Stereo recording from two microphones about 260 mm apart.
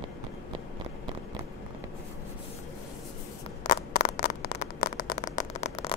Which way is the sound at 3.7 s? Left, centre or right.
Left.